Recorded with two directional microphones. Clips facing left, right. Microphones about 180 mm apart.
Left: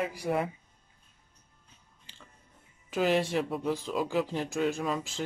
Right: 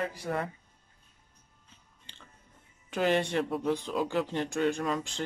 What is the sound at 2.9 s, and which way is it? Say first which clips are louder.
Speech: left 1 dB; centre (ahead or behind).